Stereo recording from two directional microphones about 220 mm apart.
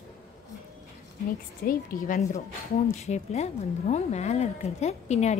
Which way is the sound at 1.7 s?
40° left (ahead or behind).